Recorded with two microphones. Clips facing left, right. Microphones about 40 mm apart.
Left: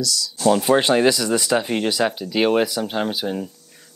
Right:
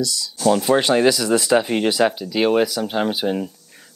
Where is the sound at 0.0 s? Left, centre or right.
Right.